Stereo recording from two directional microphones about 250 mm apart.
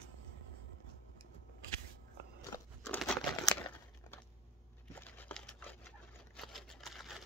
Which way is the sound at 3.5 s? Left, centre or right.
Centre.